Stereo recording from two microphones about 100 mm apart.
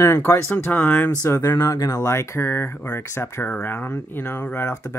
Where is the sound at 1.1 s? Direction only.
30° left (ahead or behind).